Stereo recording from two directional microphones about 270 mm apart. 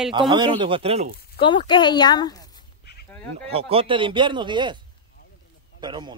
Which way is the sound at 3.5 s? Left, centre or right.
Right.